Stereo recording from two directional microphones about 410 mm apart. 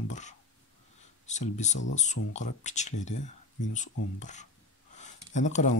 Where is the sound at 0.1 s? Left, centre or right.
Centre.